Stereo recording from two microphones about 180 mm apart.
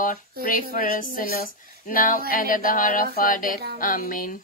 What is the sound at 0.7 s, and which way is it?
A woman's voice, 50° left (ahead or behind).